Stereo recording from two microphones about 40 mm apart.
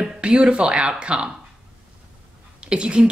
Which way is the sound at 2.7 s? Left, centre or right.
Right.